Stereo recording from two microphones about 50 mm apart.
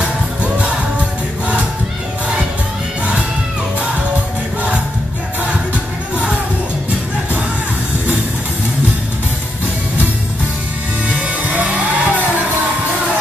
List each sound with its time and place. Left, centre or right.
0.0 s music: right
11.1 s music: right